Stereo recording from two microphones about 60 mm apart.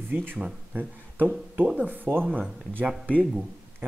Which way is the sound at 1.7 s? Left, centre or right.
Right.